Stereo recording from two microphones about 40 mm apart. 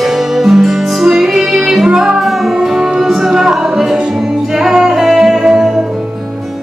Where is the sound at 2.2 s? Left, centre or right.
Centre.